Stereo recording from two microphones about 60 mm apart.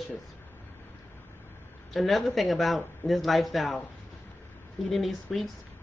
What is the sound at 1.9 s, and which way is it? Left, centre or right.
Speech, centre.